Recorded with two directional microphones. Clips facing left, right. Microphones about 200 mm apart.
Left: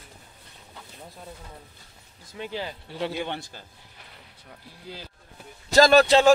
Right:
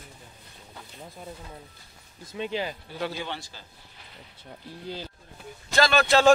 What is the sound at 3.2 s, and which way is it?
Speech, 55° left (ahead or behind).